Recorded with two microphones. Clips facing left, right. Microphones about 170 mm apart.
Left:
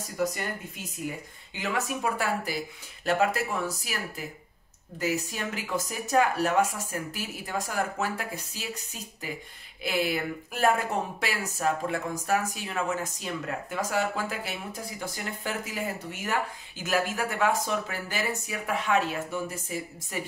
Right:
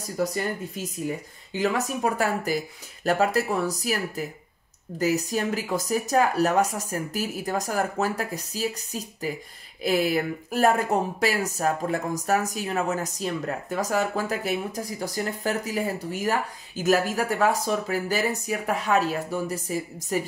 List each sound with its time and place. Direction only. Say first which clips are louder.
0.2 s speech: right 3 dB; 35° right (ahead or behind)
2.1 s speech: right 4 dB; 45° right (ahead or behind)